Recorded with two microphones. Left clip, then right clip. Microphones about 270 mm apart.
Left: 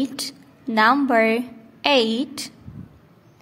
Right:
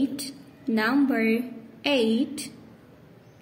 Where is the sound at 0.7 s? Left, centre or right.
Left.